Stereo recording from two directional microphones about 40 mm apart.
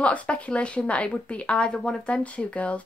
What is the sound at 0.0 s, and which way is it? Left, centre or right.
A woman's voice, left.